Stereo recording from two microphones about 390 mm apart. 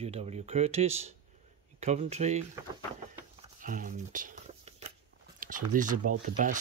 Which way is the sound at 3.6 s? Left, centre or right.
Right.